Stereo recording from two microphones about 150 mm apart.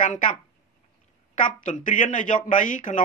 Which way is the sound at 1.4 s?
60° left (ahead or behind).